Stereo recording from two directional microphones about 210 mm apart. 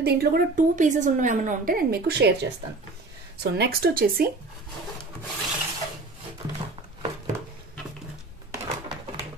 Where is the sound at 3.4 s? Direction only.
50° right (ahead or behind).